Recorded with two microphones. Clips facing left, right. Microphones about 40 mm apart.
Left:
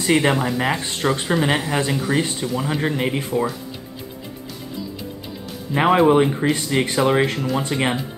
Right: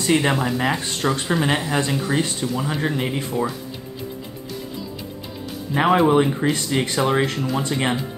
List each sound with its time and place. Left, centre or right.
0.0 s speech: centre
0.8 s speech: centre
1.3 s speech: centre
2.8 s speech: left
5.8 s speech: centre